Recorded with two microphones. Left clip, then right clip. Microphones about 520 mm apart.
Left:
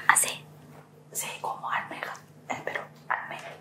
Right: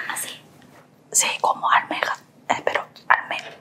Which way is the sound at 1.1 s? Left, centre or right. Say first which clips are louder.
Right 13 dB; right.